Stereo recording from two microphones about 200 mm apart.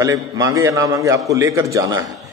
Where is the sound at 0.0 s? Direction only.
15° right (ahead or behind).